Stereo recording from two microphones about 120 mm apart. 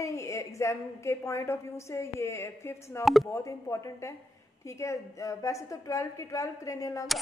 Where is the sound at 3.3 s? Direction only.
25° left (ahead or behind).